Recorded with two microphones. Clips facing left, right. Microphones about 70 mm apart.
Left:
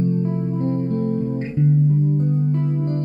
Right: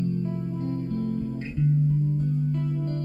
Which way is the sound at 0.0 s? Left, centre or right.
Left.